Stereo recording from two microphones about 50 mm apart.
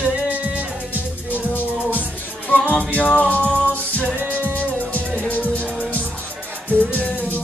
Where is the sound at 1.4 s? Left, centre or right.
Left.